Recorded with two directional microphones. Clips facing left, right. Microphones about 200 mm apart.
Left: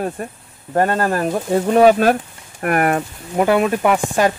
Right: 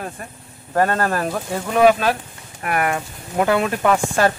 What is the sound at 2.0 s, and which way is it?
Speech, 50° left (ahead or behind).